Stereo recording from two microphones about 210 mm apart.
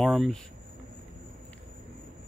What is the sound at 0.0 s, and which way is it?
Speech, centre (ahead or behind).